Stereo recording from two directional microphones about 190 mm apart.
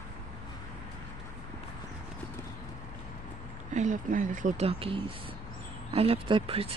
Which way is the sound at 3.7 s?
40° right (ahead or behind).